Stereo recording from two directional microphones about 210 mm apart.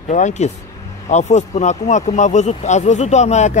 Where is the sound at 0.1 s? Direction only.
35° left (ahead or behind).